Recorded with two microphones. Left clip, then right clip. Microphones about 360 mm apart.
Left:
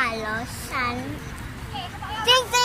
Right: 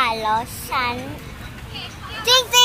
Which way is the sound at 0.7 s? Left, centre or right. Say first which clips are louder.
Right 5 dB; centre.